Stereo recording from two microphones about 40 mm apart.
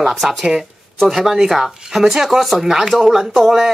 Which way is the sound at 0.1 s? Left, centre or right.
Centre.